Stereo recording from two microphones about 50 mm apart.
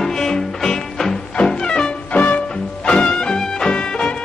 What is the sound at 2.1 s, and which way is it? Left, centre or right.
Music, left.